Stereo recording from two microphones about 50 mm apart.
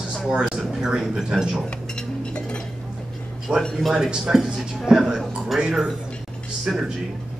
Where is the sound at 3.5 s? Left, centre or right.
Right; by 5.2 s centre.